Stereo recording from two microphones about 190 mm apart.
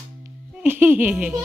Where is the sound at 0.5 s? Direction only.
10° right (ahead or behind).